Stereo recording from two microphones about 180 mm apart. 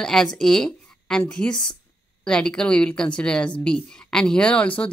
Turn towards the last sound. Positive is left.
turn(degrees=5)  # may be behind; listen again after turning